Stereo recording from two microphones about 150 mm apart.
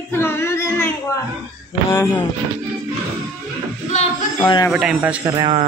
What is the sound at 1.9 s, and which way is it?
Music, 15° left (ahead or behind).